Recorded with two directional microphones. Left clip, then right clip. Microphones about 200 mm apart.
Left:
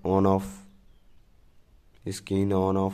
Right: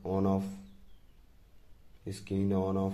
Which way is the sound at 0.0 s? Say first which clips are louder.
Left 9 dB; 40° left (ahead or behind).